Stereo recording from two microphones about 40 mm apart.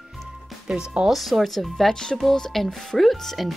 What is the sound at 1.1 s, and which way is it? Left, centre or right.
Speech, centre.